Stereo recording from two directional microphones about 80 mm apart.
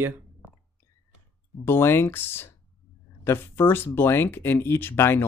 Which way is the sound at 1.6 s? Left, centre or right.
Left.